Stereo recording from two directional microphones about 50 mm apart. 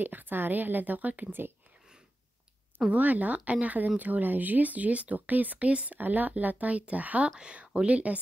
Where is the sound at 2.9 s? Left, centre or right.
Right.